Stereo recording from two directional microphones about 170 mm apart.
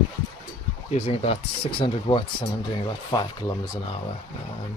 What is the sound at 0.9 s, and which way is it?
Speech, 35° left (ahead or behind).